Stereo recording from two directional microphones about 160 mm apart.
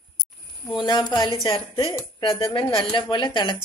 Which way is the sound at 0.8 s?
25° left (ahead or behind).